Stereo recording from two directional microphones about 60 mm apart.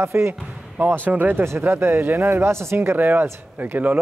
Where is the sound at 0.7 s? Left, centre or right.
Right.